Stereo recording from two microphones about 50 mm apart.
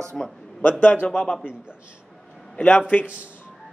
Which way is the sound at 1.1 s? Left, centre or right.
Centre.